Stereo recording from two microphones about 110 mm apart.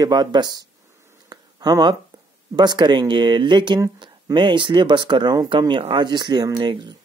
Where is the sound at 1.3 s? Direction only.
40° right (ahead or behind).